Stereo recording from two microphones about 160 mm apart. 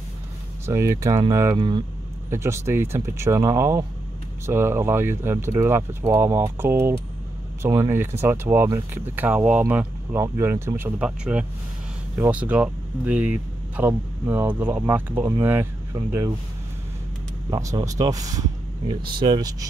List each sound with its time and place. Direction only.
0.7 s speech: 15° right (ahead or behind)
17.5 s speech: 20° right (ahead or behind)